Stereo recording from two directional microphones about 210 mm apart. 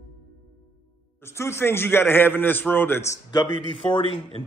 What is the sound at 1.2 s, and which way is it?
A man's voice, 10° left (ahead or behind).